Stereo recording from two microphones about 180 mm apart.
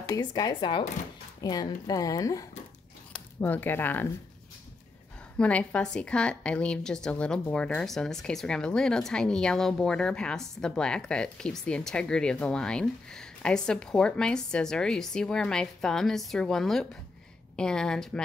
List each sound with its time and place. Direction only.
0.1 s speech: 20° left (ahead or behind)
5.4 s a woman's voice: 5° left (ahead or behind)